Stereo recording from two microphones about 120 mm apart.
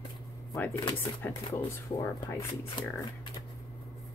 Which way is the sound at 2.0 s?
20° left (ahead or behind).